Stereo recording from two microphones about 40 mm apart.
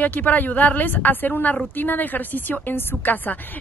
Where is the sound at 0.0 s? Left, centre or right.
Left.